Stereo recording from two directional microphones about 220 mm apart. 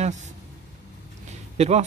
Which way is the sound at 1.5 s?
30° right (ahead or behind).